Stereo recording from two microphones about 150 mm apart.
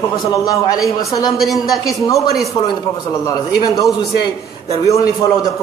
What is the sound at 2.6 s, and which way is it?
A man's voice, 25° left (ahead or behind).